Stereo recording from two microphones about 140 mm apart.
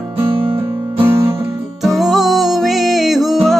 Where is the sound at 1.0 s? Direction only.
15° right (ahead or behind).